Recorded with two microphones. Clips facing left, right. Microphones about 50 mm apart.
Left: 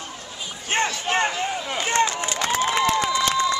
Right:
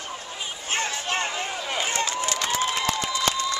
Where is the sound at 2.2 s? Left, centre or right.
Left.